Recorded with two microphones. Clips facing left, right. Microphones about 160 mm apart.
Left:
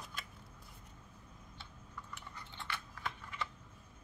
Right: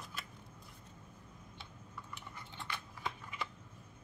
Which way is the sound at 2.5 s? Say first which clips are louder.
Even; 15° right (ahead or behind).